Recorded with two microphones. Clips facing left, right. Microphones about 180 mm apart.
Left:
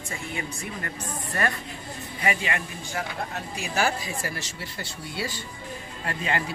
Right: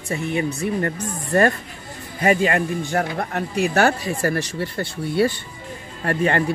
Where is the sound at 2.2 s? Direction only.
45° right (ahead or behind).